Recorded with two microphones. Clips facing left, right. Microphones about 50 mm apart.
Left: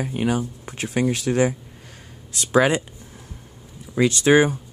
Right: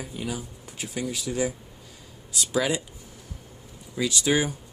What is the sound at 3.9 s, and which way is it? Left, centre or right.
Speech, left.